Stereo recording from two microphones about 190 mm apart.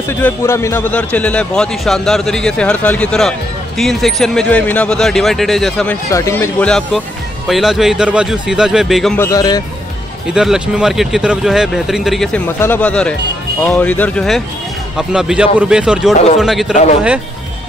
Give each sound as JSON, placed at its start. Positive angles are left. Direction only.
{"t": 0.2, "sound": "a man's voice", "side_deg": 15}
{"t": 6.1, "sound": "a man's voice", "side_deg": 15}
{"t": 9.2, "sound": "speech", "side_deg": 20}
{"t": 10.3, "sound": "a man's voice", "side_deg": -5}